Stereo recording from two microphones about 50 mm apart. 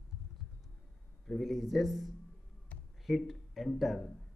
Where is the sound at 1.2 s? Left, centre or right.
Centre.